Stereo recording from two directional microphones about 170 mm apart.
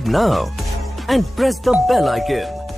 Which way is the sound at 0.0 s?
Centre (ahead or behind).